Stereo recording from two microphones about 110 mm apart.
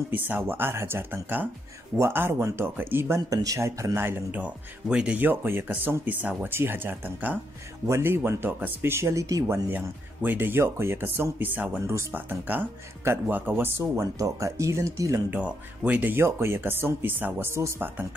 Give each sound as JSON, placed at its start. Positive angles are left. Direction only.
{"t": 0.1, "sound": "speech", "side_deg": -20}
{"t": 9.7, "sound": "speech", "side_deg": -20}
{"t": 15.3, "sound": "speech", "side_deg": -10}